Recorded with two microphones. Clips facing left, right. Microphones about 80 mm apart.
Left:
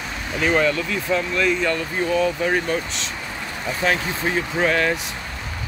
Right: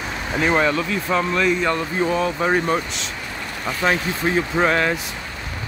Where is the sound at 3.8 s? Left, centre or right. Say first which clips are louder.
Right 2 dB; centre.